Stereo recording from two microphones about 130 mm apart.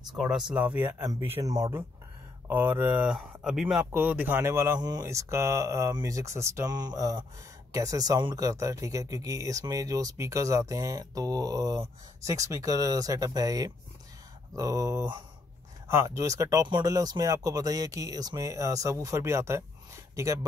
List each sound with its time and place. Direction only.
0.1 s speech: 5° right (ahead or behind)
1.4 s speech: 25° right (ahead or behind)
3.1 s speech: centre (ahead or behind)
3.9 s speech: 15° right (ahead or behind)